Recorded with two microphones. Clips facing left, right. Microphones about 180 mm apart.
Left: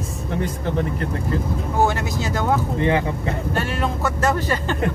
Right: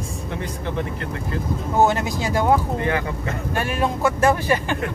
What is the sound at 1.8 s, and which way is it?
Speech, 20° right (ahead or behind).